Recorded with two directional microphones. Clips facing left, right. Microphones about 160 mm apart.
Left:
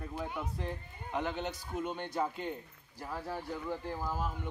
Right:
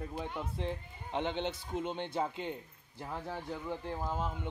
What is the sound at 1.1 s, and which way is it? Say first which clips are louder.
Speech: right 1 dB; 25° right (ahead or behind).